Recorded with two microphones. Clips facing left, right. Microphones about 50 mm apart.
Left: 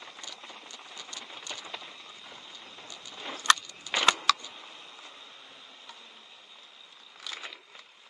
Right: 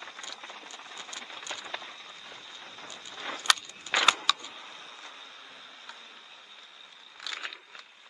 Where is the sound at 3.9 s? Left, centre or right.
Centre.